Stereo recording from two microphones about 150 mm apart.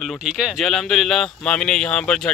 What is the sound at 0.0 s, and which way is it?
Speech, 5° right (ahead or behind).